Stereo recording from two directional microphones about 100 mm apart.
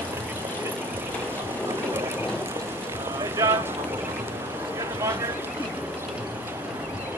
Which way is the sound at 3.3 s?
25° right (ahead or behind).